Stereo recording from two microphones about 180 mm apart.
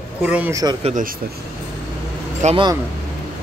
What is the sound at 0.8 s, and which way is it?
Speech, 45° right (ahead or behind).